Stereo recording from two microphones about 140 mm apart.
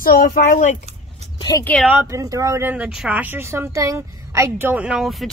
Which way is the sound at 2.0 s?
25° right (ahead or behind).